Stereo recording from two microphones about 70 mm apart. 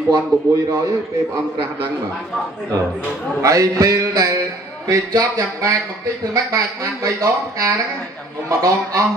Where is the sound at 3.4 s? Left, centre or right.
Right.